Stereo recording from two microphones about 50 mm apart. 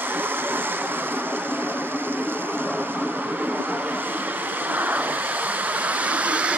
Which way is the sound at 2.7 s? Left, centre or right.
Right.